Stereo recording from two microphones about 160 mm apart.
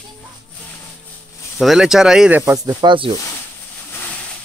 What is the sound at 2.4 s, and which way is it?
Speech, 20° right (ahead or behind).